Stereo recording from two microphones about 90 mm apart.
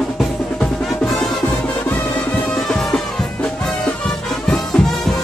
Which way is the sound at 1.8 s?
20° left (ahead or behind).